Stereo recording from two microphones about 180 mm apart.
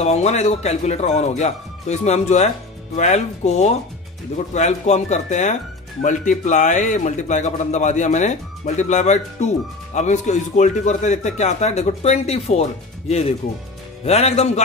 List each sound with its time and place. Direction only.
0.0 s a man's voice: 35° left (ahead or behind)
14.0 s a man's voice: 35° left (ahead or behind)